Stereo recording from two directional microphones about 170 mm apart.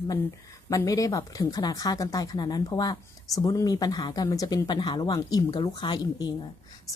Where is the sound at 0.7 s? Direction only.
20° left (ahead or behind).